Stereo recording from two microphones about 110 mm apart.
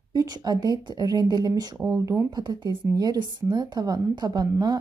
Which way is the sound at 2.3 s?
40° right (ahead or behind).